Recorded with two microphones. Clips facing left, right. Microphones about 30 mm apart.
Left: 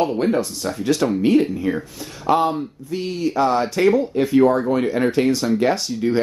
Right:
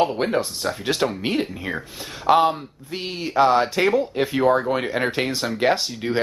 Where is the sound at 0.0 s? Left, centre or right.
Right.